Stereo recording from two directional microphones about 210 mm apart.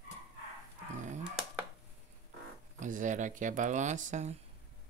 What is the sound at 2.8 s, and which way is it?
Speech, 35° right (ahead or behind).